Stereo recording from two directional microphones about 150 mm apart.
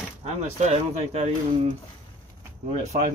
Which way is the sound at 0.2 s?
45° right (ahead or behind).